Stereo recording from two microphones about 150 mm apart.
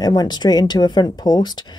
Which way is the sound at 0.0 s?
25° left (ahead or behind).